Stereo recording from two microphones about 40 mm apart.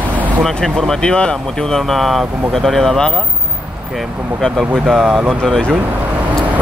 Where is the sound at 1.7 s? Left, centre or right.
Centre.